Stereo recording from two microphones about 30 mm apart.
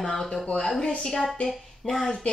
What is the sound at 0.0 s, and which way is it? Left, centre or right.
Speech, centre.